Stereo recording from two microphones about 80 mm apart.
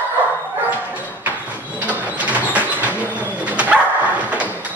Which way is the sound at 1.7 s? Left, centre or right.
Right.